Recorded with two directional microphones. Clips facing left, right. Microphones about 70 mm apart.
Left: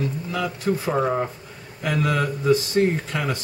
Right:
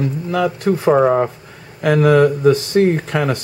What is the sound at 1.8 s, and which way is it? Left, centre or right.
Speech, right.